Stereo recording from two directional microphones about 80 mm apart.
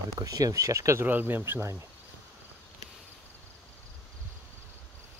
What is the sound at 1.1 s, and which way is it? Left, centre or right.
Speech, right.